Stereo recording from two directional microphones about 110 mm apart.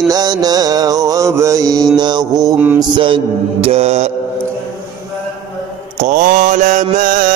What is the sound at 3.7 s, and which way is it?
Mantra, 80° right.